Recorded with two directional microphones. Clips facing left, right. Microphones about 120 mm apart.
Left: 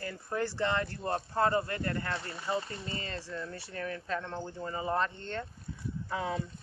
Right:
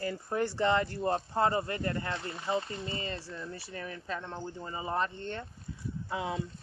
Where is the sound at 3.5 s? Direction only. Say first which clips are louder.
Left 3 dB; 10° right (ahead or behind).